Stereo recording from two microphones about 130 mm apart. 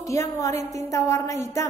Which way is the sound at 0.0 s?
25° left (ahead or behind).